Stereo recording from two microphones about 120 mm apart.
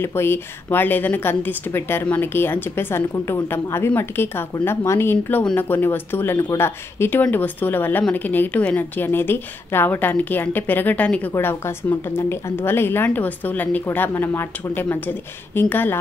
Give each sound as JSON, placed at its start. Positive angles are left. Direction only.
{"t": 0.0, "sound": "a woman's voice", "side_deg": 20}